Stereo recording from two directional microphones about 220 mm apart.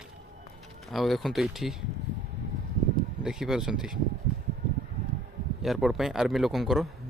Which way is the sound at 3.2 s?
5° right (ahead or behind).